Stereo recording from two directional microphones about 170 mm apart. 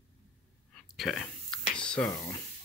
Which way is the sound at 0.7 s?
Centre (ahead or behind).